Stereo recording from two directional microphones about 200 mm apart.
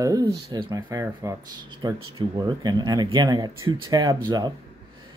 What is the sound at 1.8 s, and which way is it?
Speech, 20° right (ahead or behind).